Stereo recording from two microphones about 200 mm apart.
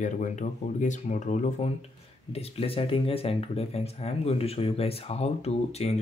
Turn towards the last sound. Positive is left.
turn(degrees=30)  # may be behind; listen again after turning